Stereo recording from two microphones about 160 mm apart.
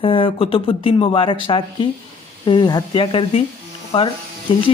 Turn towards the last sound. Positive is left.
turn(degrees=30)  # may be behind; listen again after turning